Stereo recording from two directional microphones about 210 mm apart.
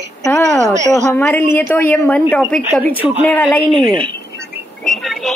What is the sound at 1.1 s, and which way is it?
A man's voice, 10° left (ahead or behind).